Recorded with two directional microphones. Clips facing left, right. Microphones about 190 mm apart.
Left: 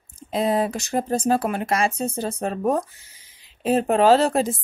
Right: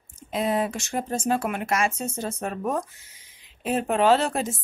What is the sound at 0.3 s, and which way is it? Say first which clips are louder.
Speech: left 3 dB; 35° left (ahead or behind).